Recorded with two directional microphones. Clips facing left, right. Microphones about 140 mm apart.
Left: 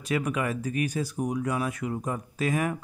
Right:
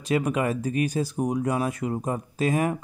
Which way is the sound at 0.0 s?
25° right (ahead or behind).